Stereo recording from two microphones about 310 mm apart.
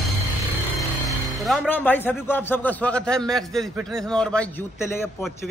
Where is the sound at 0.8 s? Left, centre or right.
Centre.